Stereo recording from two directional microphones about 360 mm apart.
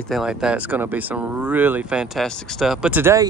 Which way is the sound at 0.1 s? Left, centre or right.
Centre.